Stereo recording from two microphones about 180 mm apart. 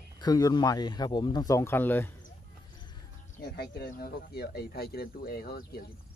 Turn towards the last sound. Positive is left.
turn(degrees=60)  # may be behind; listen again after turning